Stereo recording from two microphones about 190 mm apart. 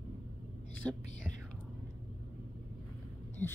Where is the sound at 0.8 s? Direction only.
5° left (ahead or behind).